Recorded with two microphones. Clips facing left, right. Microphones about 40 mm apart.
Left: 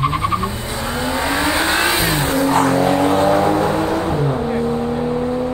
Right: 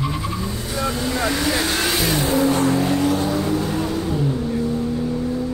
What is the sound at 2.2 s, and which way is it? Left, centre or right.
Vehicle, left.